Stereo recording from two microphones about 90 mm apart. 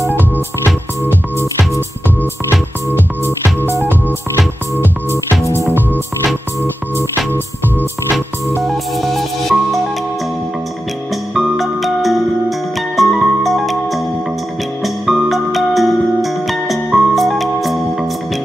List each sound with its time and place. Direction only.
0.7 s music: 25° left (ahead or behind)
3.6 s music: 25° right (ahead or behind)
5.6 s music: 25° right (ahead or behind)
8.6 s music: centre (ahead or behind)
11.3 s music: centre (ahead or behind)